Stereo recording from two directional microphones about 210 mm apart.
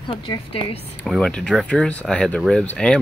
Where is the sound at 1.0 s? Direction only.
Centre (ahead or behind).